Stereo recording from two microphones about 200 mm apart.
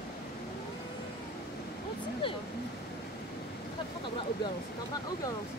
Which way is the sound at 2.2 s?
25° left (ahead or behind).